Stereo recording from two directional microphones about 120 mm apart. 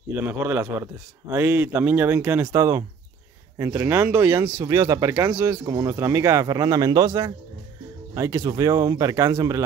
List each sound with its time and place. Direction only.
0.1 s speech: 15° right (ahead or behind); by 9.6 s 30° right (ahead or behind)